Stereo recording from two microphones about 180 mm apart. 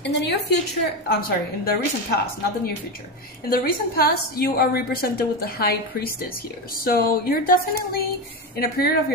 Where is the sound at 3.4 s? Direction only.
55° left (ahead or behind).